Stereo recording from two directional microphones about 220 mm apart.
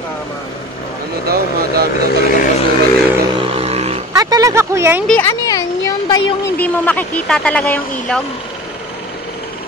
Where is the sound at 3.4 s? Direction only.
25° right (ahead or behind).